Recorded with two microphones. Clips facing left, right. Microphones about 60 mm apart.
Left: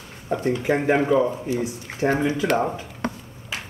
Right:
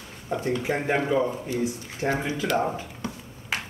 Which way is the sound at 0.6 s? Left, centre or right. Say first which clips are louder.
Left 7 dB; left.